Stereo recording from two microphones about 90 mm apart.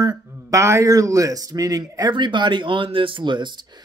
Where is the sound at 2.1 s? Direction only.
60° right (ahead or behind).